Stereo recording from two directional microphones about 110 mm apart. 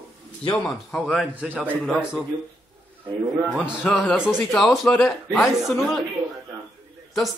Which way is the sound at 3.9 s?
15° left (ahead or behind).